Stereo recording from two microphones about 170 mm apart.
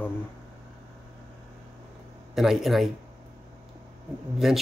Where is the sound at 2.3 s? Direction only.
Centre (ahead or behind).